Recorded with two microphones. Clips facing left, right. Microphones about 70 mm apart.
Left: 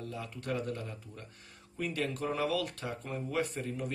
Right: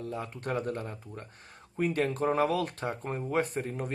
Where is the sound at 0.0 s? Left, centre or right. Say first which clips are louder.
Right 5 dB; right.